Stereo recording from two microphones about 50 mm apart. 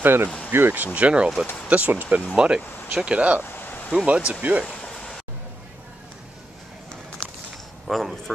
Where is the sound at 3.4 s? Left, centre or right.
Left.